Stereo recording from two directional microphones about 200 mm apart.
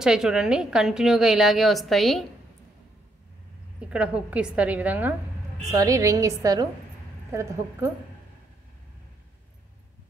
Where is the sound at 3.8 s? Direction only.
5° right (ahead or behind).